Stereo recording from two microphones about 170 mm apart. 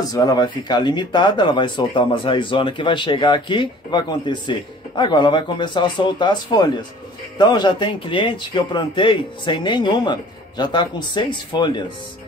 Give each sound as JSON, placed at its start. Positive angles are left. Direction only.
{"t": 0.1, "sound": "speech", "side_deg": 20}